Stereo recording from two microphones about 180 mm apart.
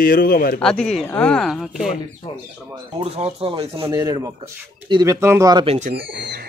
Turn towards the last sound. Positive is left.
turn(degrees=-65)  # may be behind; listen again after turning